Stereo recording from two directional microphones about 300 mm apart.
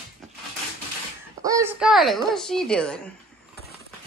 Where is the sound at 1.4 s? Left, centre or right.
Centre.